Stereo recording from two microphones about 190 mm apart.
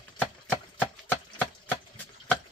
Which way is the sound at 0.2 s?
10° left (ahead or behind).